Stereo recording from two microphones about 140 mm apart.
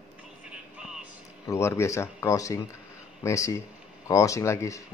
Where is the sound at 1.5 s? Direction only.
20° left (ahead or behind).